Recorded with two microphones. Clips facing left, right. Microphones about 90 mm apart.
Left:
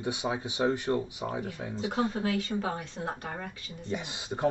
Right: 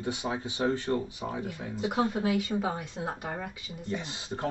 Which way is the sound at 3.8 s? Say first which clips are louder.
Even; 20° left (ahead or behind).